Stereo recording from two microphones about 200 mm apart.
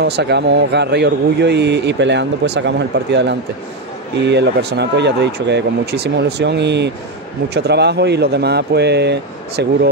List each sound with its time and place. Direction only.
0.0 s speech: 55° right (ahead or behind)